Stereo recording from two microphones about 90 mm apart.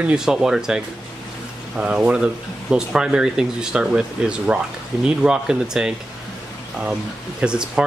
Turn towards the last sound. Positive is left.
turn(degrees=-10)  # may be behind; listen again after turning